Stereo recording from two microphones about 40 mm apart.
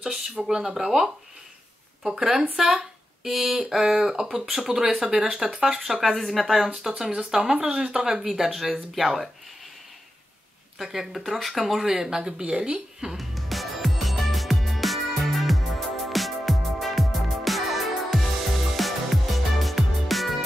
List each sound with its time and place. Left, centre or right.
0.0 s speech: centre
6.0 s speech: centre
7.2 s speech: centre
10.8 s speech: centre; by 12.8 s right
13.2 s music: centre